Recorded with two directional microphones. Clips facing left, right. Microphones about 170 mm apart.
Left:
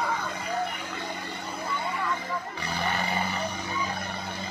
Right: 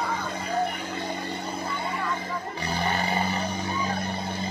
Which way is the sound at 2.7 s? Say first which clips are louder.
Right 3 dB; 35° right (ahead or behind).